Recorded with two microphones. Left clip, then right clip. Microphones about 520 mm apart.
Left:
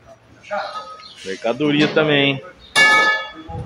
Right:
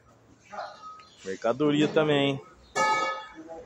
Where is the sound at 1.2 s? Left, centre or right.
Right.